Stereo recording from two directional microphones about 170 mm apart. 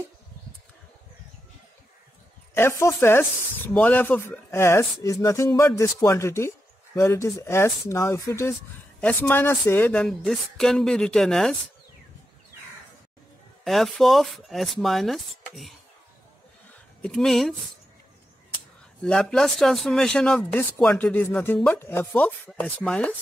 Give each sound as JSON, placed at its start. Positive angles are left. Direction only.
{"t": 2.8, "sound": "speech", "side_deg": 15}
{"t": 5.7, "sound": "speech", "side_deg": 5}
{"t": 13.7, "sound": "speech", "side_deg": 0}
{"t": 17.0, "sound": "speech", "side_deg": 5}
{"t": 19.0, "sound": "speech", "side_deg": 5}